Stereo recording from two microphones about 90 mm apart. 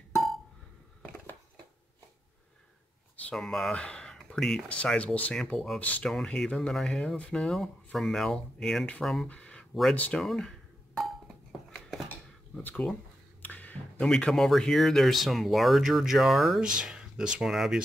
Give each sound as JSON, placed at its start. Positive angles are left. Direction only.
{"t": 3.3, "sound": "speech", "side_deg": 5}
{"t": 6.0, "sound": "speech", "side_deg": 5}
{"t": 9.3, "sound": "a sound", "side_deg": 10}
{"t": 9.9, "sound": "speech", "side_deg": 15}
{"t": 10.2, "sound": "speech", "side_deg": 5}
{"t": 12.6, "sound": "speech", "side_deg": 15}